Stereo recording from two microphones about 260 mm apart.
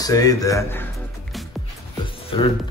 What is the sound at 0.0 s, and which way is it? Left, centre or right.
Music, centre.